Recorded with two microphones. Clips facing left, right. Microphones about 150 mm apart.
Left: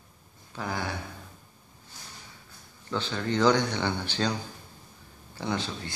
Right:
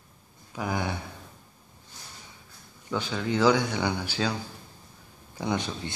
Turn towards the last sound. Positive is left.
turn(degrees=-20)  # may be behind; listen again after turning